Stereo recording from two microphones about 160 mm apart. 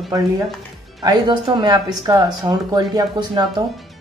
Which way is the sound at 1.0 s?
30° right (ahead or behind).